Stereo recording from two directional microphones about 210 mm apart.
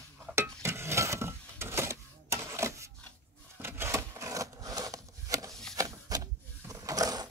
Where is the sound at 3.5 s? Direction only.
10° right (ahead or behind).